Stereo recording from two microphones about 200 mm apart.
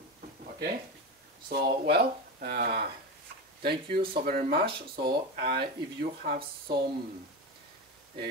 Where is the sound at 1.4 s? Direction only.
55° right (ahead or behind).